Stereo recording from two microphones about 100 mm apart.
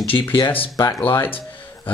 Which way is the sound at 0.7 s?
40° left (ahead or behind).